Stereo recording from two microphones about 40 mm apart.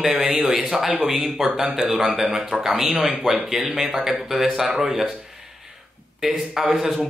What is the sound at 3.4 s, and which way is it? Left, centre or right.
Speech, centre.